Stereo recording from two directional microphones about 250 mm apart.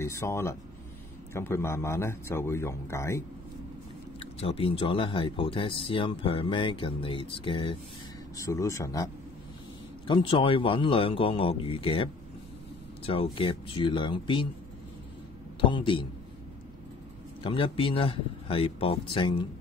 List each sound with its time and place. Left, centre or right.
0.0 s a man's voice: centre
4.2 s a man's voice: left
15.6 s speech: centre
17.4 s speech: left